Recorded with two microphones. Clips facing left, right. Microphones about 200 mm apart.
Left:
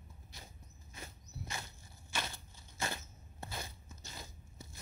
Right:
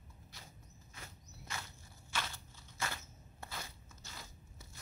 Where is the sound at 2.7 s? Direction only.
20° left (ahead or behind).